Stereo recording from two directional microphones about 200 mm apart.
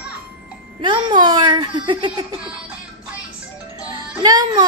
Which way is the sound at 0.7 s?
25° right (ahead or behind).